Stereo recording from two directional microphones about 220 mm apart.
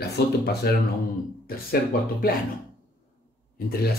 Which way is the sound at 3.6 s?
45° left (ahead or behind).